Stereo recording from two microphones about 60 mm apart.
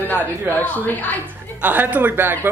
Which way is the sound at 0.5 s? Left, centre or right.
Left.